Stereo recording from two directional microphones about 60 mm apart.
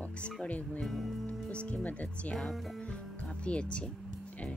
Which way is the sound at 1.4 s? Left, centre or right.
Left.